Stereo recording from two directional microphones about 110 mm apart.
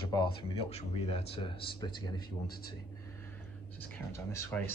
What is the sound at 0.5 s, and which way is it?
A man's voice, 65° left (ahead or behind).